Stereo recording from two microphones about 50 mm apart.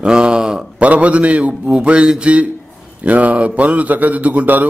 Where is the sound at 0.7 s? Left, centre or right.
Right.